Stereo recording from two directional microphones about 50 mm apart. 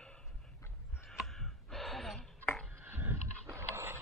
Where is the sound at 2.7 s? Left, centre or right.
Right.